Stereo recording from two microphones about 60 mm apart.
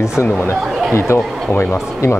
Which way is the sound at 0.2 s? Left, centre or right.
Left.